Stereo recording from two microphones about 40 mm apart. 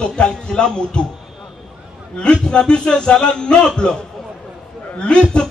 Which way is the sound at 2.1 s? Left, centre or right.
Left.